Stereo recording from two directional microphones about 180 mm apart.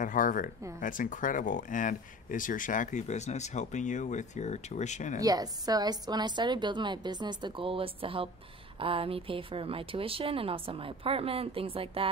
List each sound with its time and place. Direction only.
0.0 s speech: 50° left (ahead or behind)
5.2 s a woman's voice: 20° right (ahead or behind)